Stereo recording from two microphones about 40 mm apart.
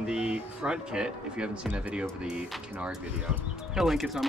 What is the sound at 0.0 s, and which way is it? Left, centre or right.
Speech, right.